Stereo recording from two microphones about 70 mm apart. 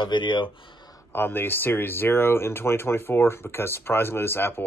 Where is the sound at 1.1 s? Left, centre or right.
Left.